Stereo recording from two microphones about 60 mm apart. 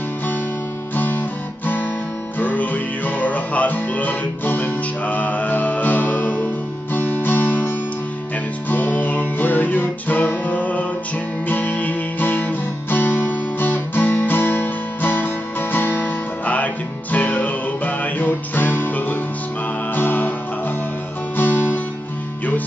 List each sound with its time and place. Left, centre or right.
0.9 s guitar: left
2.3 s music: left
21.4 s music: left